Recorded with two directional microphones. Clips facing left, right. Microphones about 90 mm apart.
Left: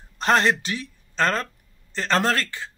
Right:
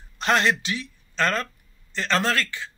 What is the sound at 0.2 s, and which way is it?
Speech, 40° left (ahead or behind).